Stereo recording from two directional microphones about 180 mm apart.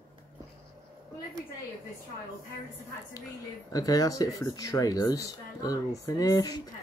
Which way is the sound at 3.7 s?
20° left (ahead or behind).